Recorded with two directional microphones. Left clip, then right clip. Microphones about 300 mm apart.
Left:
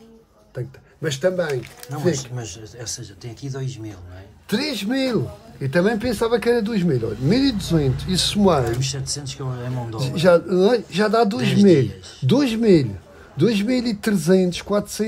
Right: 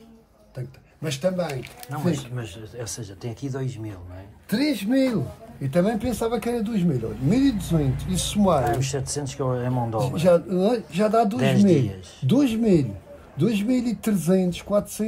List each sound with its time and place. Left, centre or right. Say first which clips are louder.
1.5 s speech: left 6 dB; centre
4.5 s speech: even; centre
8.7 s speech: even; centre
10.2 s speech: left 5 dB; left
11.4 s speech: left 4 dB; centre
12.3 s speech: left 4 dB; left